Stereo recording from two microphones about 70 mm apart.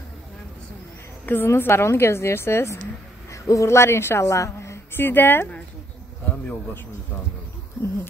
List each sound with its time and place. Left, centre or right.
1.2 s a woman's voice: left
3.3 s speech: left
4.9 s a woman's voice: left